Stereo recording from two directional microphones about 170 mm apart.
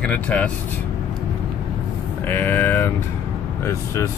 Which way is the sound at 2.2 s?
10° left (ahead or behind).